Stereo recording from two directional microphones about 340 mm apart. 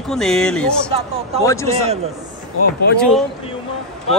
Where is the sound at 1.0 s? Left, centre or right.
Centre.